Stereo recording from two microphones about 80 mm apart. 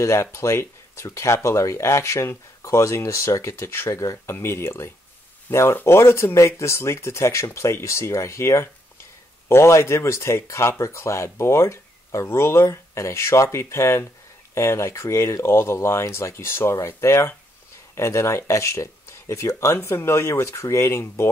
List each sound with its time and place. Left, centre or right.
0.0 s speech: left